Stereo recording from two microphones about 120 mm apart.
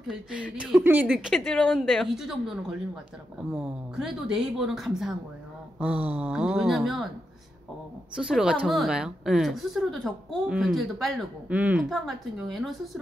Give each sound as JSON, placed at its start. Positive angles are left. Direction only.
{"t": 0.1, "sound": "a woman's voice", "side_deg": -10}
{"t": 8.2, "sound": "a woman's voice", "side_deg": -5}
{"t": 11.4, "sound": "speech", "side_deg": -10}
{"t": 12.4, "sound": "a woman's voice", "side_deg": 0}